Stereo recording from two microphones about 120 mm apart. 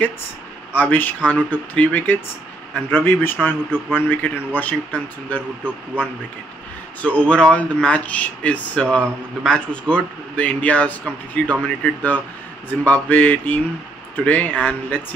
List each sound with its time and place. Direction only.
0.7 s speech: 15° left (ahead or behind)
5.6 s speech: 10° right (ahead or behind)
7.2 s speech: 10° left (ahead or behind)